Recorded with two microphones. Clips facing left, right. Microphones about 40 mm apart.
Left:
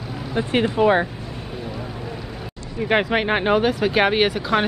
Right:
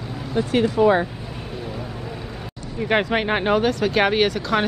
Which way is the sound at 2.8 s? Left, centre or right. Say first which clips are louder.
Left 1 dB; centre.